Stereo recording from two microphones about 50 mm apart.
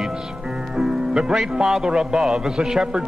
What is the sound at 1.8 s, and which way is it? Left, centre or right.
Music, centre.